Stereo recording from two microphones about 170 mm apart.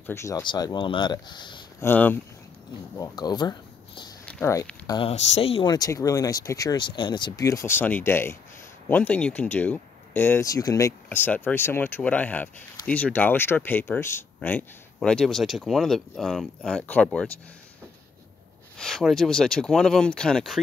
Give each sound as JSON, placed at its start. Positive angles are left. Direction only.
{"t": 0.0, "sound": "speech", "side_deg": 15}
{"t": 1.8, "sound": "speech", "side_deg": 10}
{"t": 3.0, "sound": "speech", "side_deg": 25}
{"t": 4.3, "sound": "speech", "side_deg": 15}
{"t": 4.8, "sound": "speech", "side_deg": 25}
{"t": 5.1, "sound": "speech", "side_deg": 40}
{"t": 18.8, "sound": "speech", "side_deg": 0}